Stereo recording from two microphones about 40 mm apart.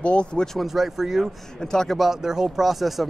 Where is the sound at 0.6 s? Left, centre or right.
Centre.